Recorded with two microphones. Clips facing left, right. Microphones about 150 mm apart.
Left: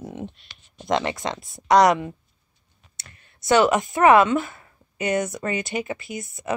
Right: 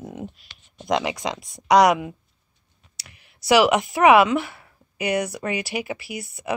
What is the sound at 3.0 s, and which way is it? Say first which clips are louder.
Clicking: even; 90° right.